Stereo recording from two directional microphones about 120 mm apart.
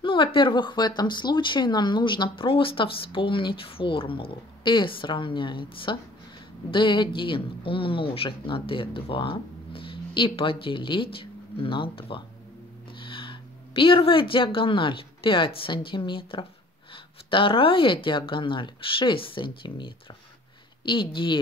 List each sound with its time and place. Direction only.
0.0 s speech: 45° left (ahead or behind)